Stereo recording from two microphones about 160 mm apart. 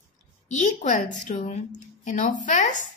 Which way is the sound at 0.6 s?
50° left (ahead or behind).